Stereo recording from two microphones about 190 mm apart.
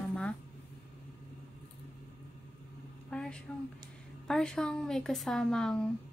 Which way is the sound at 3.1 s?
5° left (ahead or behind).